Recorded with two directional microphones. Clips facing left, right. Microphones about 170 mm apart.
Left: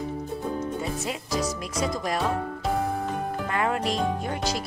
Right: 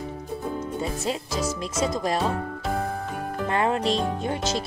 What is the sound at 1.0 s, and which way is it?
Speech, 25° right (ahead or behind).